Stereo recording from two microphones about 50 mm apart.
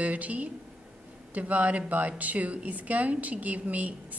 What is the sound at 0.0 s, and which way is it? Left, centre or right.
A woman's voice, right.